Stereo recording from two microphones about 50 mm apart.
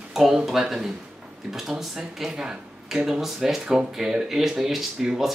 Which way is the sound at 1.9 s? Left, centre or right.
Centre.